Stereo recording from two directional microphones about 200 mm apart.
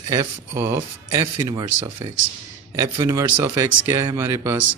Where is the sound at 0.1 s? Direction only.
15° right (ahead or behind).